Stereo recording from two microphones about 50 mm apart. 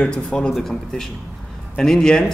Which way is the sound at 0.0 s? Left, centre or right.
Centre.